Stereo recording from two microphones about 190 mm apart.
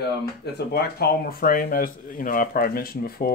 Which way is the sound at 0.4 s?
60° left (ahead or behind).